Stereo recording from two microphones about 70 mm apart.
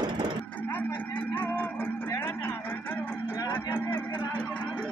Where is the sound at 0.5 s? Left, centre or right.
Left.